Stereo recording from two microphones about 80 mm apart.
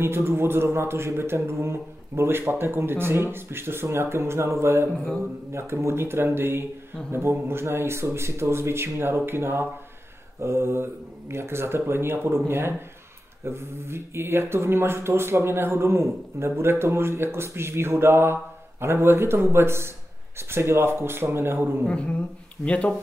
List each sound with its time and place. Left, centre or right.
0.0 s speech: right
4.9 s mantra: centre
5.5 s speech: right
21.8 s a woman's voice: centre